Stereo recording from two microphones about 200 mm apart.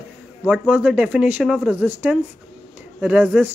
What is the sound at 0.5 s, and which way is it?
Speech, 5° right (ahead or behind).